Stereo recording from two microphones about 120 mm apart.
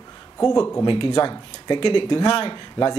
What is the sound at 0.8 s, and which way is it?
Speech, 45° left (ahead or behind).